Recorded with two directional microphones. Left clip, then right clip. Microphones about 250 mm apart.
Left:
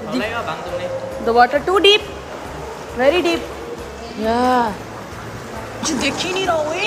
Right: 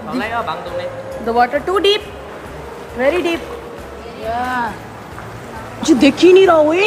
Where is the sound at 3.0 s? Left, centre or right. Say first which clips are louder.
Even; centre.